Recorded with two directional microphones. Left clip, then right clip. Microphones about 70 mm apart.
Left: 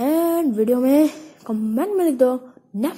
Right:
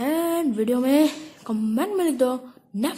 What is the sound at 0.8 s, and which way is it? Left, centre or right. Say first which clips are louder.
Speech: left 2 dB; centre.